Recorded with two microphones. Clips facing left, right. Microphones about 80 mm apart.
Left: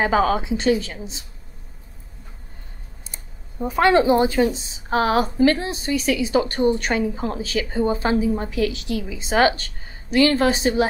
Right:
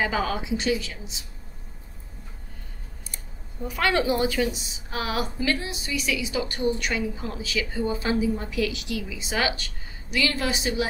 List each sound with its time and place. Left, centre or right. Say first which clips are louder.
0.0 s speech: left 7 dB; left
3.1 s speech: left 2 dB; left